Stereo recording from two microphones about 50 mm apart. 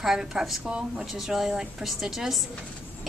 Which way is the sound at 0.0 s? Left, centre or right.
Centre.